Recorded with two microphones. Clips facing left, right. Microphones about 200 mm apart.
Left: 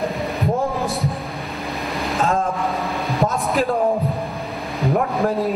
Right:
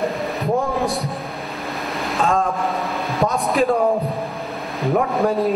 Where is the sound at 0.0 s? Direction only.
Centre (ahead or behind).